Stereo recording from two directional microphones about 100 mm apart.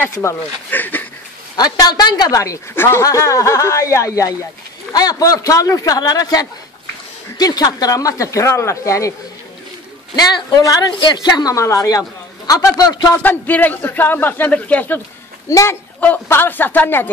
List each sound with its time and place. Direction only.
0.1 s a woman's voice: 30° left (ahead or behind)
0.7 s a sound: 20° left (ahead or behind)
1.6 s a woman's voice: 40° left (ahead or behind)
10.3 s a woman's voice: 40° left (ahead or behind)
11.5 s a woman's voice: 30° left (ahead or behind)
13.2 s a man's voice: 20° left (ahead or behind)
15.5 s a woman's voice: 30° left (ahead or behind)
16.0 s a man's voice: 20° left (ahead or behind)